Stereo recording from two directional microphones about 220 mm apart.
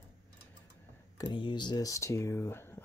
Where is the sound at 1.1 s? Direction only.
20° left (ahead or behind).